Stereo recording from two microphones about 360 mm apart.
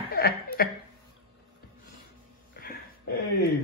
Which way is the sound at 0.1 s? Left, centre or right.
Left.